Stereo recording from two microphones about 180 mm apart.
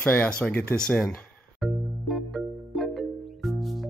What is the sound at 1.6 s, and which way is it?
Music, centre (ahead or behind).